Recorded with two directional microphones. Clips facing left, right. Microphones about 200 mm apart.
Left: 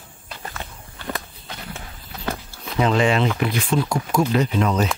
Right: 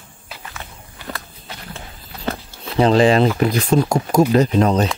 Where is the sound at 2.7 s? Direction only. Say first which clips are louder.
Right 6 dB; 35° right (ahead or behind).